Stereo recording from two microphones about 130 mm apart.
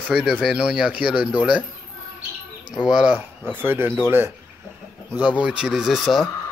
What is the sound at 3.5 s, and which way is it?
Speech, 15° right (ahead or behind).